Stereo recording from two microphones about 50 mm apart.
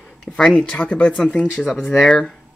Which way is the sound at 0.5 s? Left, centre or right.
Centre.